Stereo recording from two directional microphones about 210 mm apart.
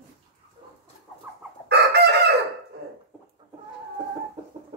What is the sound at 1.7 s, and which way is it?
Chicken, 50° right (ahead or behind).